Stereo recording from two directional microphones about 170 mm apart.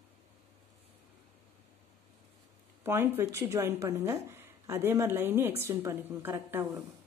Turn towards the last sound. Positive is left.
turn(degrees=-15)  # may be behind; listen again after turning